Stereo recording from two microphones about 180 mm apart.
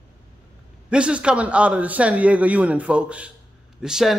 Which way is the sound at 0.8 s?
5° right (ahead or behind).